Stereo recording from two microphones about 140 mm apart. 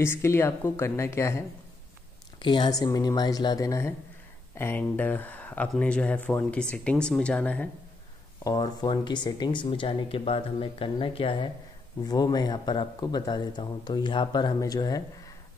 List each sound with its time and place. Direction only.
0.0 s speech: 20° left (ahead or behind)
2.3 s speech: 35° left (ahead or behind); by 7.7 s 10° left (ahead or behind)
8.5 s speech: 30° left (ahead or behind)